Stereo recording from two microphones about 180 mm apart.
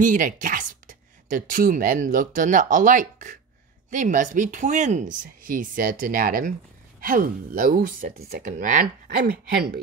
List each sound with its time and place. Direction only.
0.0 s speech: 45° right (ahead or behind)
9.1 s speech: 60° right (ahead or behind)